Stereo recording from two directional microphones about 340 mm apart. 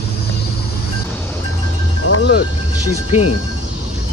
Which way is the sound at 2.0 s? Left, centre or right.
Left.